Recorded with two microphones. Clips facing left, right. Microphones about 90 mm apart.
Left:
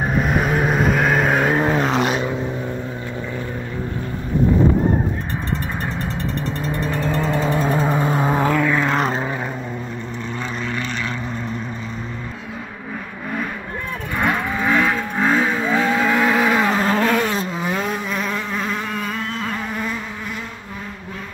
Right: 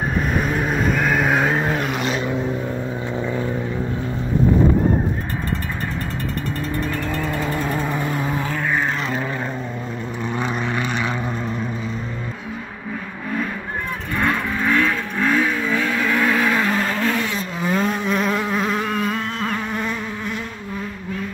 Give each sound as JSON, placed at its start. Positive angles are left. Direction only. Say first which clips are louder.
{"t": 0.2, "sound": "vehicle", "louder": "left 3 dB", "side_deg": 5}
{"t": 1.5, "sound": "vehicle", "louder": "left 3 dB", "side_deg": 25}
{"t": 6.6, "sound": "vehicle", "louder": "left 2 dB", "side_deg": 20}
{"t": 8.5, "sound": "vehicle", "louder": "left 4 dB", "side_deg": 90}
{"t": 10.3, "sound": "vehicle", "louder": "right 3 dB", "side_deg": -15}
{"t": 14.1, "sound": "vehicle", "louder": "left 1 dB", "side_deg": 15}
{"t": 17.2, "sound": "vehicle", "louder": "left 4 dB", "side_deg": 40}
{"t": 17.6, "sound": "insect", "louder": "right 2 dB", "side_deg": 10}